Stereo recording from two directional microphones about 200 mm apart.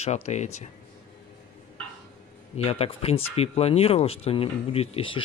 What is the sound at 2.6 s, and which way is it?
Speech, 30° left (ahead or behind).